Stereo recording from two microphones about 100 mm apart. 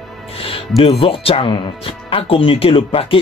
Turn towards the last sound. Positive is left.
turn(degrees=65)  # may be behind; listen again after turning